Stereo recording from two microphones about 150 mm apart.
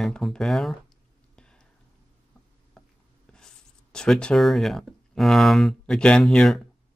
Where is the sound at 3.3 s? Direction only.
5° left (ahead or behind).